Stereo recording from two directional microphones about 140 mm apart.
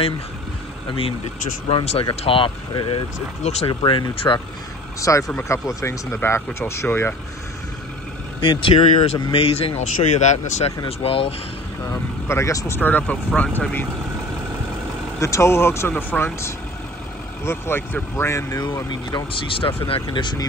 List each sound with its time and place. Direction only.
0.8 s speech: 40° left (ahead or behind)
3.4 s speech: 50° left (ahead or behind)
3.8 s speech: 35° left (ahead or behind)
5.3 s speech: 20° left (ahead or behind)
8.4 s speech: 40° left (ahead or behind)
10.9 s speech: 45° left (ahead or behind)
11.9 s speech: 20° left (ahead or behind)
15.1 s speech: 20° left (ahead or behind)